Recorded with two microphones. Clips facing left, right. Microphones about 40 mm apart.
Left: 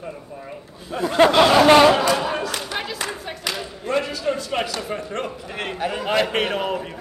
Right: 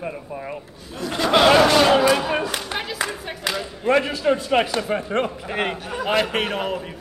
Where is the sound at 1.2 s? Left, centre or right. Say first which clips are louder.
Even; centre.